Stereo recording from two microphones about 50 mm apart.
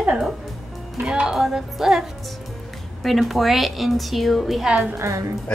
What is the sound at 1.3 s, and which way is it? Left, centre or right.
A woman's voice, centre.